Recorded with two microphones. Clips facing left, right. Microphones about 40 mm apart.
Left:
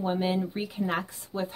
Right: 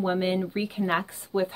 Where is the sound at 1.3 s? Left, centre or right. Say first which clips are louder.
Right 6 dB; right.